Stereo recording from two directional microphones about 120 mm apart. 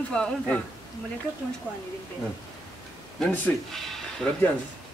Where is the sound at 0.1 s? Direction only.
5° left (ahead or behind).